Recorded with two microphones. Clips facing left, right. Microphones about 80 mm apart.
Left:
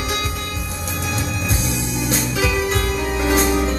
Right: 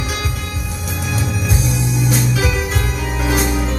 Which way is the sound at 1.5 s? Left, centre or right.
Centre.